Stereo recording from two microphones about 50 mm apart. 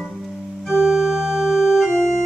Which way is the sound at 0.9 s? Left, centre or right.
Centre.